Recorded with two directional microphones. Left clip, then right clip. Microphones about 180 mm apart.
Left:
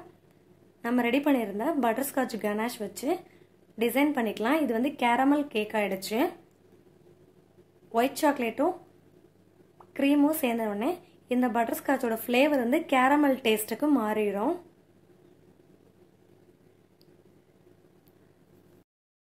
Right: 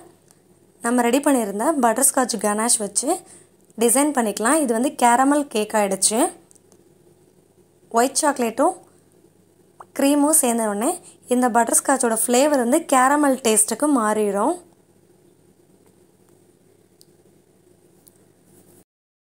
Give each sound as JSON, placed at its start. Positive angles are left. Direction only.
{"t": 0.8, "sound": "a woman's voice", "side_deg": -35}
{"t": 8.2, "sound": "a woman's voice", "side_deg": -35}
{"t": 9.8, "sound": "a woman's voice", "side_deg": -40}